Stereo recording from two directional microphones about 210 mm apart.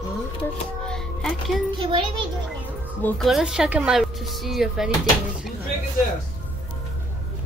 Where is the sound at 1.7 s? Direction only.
25° right (ahead or behind).